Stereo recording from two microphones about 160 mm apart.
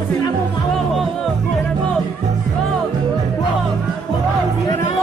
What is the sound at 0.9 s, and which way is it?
Music, centre (ahead or behind).